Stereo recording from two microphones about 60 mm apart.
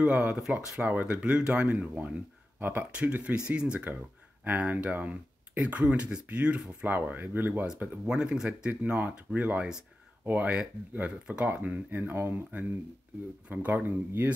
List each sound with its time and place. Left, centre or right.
0.0 s speech: right
2.9 s speech: right
4.5 s speech: right
6.9 s speech: right
8.0 s speech: centre; by 14.3 s right